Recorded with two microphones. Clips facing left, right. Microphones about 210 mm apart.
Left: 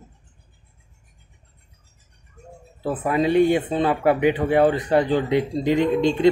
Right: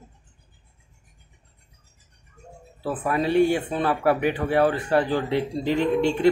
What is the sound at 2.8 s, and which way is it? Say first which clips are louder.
Speech: left 3 dB; 20° left (ahead or behind).